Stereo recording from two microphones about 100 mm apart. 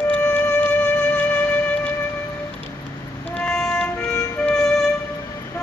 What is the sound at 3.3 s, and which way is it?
Music, 5° left (ahead or behind).